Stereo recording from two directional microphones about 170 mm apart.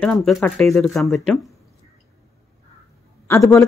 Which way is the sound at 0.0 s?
5° left (ahead or behind).